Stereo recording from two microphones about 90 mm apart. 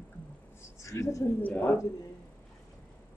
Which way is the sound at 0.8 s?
35° left (ahead or behind).